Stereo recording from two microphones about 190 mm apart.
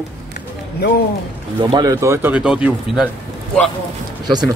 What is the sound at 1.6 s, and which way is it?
Speech, 20° right (ahead or behind).